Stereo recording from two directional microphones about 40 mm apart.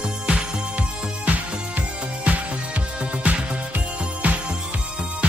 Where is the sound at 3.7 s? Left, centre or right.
Right.